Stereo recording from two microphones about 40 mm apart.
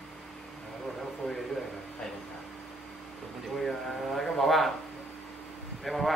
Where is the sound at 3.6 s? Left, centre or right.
Centre.